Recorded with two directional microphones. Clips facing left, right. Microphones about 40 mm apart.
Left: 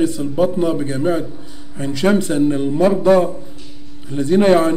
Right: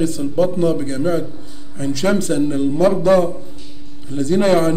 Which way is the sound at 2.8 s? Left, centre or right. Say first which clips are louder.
Left 1 dB; left.